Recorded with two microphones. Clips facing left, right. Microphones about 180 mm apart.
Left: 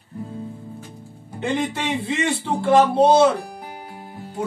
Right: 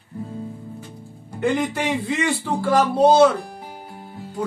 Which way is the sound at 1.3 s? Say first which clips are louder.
Right 2 dB; 25° left (ahead or behind).